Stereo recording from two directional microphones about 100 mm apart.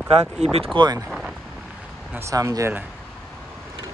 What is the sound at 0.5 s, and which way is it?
Speech, 75° right (ahead or behind).